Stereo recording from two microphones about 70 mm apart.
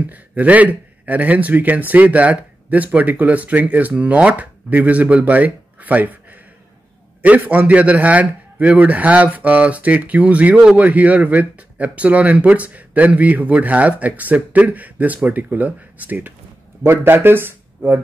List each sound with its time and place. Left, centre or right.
0.0 s a man's voice: right
7.2 s a man's voice: right